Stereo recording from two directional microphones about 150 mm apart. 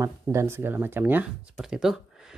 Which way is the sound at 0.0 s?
20° right (ahead or behind).